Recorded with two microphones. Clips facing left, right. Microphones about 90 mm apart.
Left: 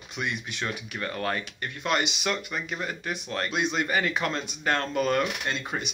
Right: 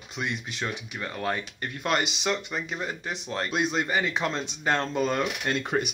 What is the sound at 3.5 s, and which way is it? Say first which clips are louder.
Speech: right 1 dB; 40° right (ahead or behind).